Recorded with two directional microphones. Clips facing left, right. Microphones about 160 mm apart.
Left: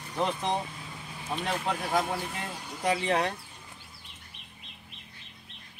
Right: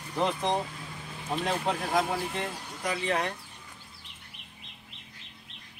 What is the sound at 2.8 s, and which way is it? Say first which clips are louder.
Speech: left 3 dB; 30° left (ahead or behind).